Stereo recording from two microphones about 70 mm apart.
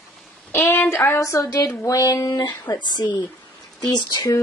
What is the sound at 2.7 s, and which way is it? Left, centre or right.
Speech, left.